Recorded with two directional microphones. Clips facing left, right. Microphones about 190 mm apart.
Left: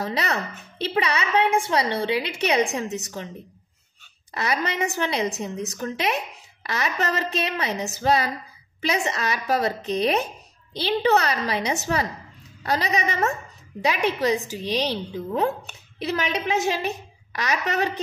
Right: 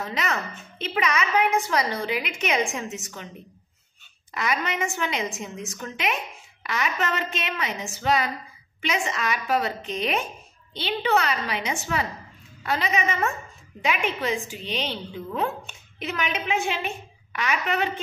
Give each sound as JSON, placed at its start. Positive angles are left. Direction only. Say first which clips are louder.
{"t": 0.0, "sound": "a woman's voice", "louder": "left 2 dB", "side_deg": 35}
{"t": 4.3, "sound": "a woman's voice", "louder": "left 1 dB", "side_deg": 35}